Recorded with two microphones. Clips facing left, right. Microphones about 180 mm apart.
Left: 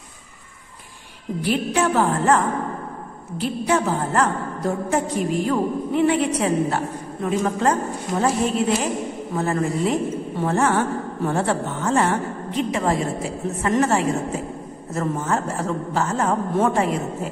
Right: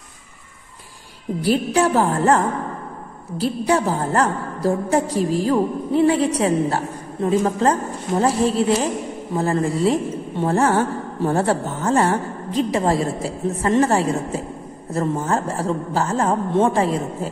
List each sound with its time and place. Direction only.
1.4 s a woman's voice: 35° right (ahead or behind)